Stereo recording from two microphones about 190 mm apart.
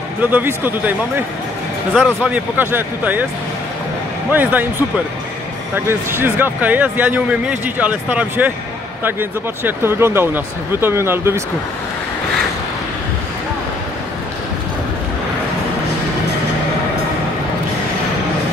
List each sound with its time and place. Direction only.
0.2 s speech: 10° right (ahead or behind)
2.2 s speech: 10° right (ahead or behind)
4.3 s speech: 10° right (ahead or behind)
5.9 s speech: 10° right (ahead or behind)